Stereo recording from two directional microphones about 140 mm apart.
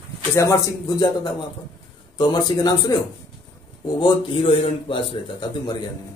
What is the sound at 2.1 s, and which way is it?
A man's voice, 30° left (ahead or behind).